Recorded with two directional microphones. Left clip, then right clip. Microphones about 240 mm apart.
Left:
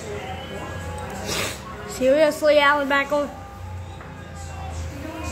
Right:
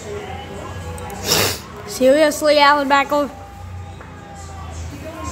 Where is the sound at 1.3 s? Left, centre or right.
Right.